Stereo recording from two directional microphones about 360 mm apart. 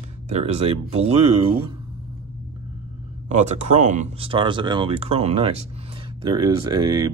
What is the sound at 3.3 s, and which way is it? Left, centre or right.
Speech, centre.